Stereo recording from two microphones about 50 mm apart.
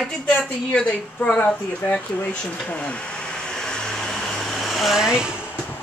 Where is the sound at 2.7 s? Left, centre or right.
Left; by 5.0 s centre.